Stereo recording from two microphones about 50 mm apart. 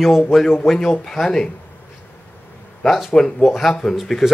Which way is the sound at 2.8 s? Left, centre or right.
Centre.